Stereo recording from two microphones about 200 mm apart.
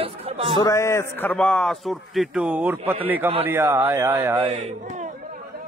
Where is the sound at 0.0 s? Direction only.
30° right (ahead or behind).